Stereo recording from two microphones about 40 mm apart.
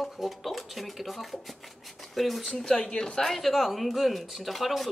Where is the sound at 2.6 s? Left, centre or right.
Centre.